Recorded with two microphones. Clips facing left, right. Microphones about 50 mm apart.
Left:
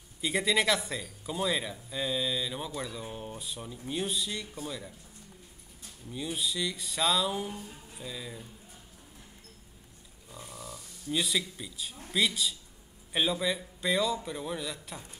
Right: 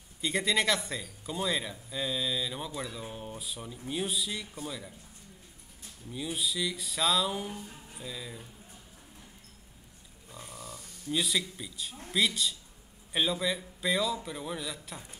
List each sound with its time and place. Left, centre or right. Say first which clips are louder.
0.2 s speech: left 1 dB; centre
6.0 s speech: even; centre
10.5 s speech: left 1 dB; right
11.1 s speech: even; centre